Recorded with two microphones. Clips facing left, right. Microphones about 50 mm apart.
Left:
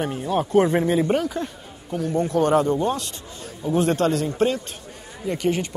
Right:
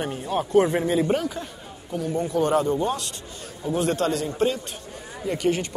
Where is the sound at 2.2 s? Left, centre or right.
Left.